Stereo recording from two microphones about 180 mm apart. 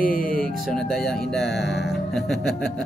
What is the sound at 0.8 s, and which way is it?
Speech, centre (ahead or behind).